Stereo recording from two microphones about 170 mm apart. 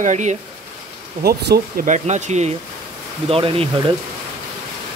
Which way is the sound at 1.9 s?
45° right (ahead or behind).